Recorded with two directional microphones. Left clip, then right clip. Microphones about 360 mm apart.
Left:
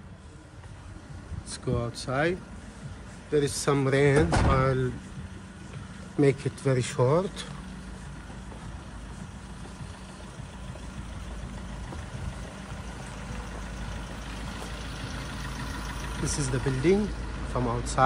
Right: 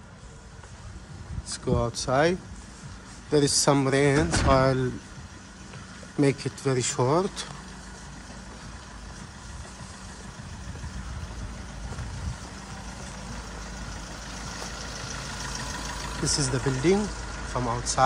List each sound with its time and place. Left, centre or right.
1.5 s speech: centre
6.1 s speech: centre
16.0 s vehicle: right
16.3 s speech: centre